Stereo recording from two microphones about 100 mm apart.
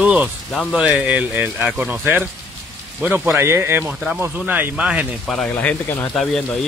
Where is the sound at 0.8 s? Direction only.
15° right (ahead or behind).